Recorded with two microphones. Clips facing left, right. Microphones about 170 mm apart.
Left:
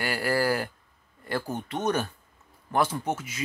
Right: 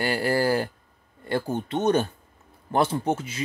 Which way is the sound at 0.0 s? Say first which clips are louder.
Right 3 dB; 25° right (ahead or behind).